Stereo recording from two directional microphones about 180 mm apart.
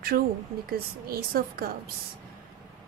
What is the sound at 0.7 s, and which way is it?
A woman's voice, 55° right (ahead or behind).